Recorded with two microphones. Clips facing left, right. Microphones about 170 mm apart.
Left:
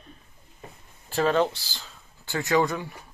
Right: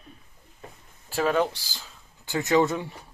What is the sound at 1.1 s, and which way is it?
Speech, 10° right (ahead or behind).